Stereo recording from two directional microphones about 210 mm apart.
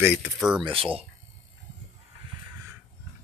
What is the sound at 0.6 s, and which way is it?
Speech, 25° right (ahead or behind).